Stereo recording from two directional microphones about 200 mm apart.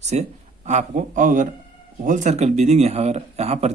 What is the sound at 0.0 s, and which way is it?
Speech, 35° right (ahead or behind).